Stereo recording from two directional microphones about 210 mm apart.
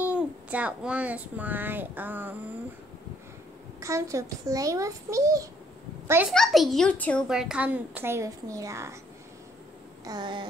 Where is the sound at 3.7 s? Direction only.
15° right (ahead or behind).